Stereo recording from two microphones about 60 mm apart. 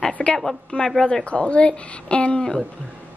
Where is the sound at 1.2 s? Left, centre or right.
Centre.